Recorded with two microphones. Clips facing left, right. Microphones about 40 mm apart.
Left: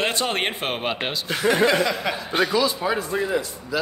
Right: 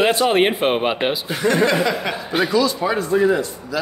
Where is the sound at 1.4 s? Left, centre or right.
Centre.